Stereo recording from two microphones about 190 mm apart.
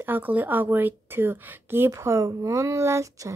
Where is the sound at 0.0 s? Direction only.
10° right (ahead or behind).